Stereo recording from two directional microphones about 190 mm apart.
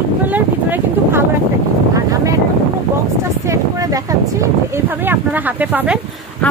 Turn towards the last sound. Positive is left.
turn(degrees=-5)  # may be behind; listen again after turning